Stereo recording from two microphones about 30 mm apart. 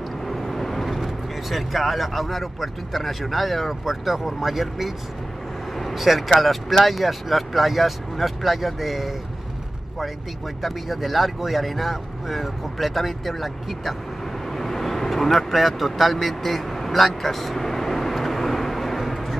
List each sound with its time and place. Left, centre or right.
0.3 s speech: centre
5.9 s speech: centre
10.6 s speech: centre
14.5 s vehicle: centre